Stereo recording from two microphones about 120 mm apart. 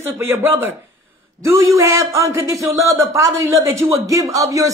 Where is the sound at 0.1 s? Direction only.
20° right (ahead or behind).